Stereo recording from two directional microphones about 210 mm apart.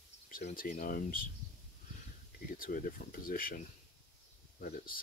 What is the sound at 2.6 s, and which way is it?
Speech, 40° left (ahead or behind).